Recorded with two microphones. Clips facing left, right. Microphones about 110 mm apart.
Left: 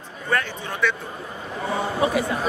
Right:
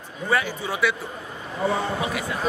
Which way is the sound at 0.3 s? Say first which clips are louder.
Right 1 dB; 10° right (ahead or behind).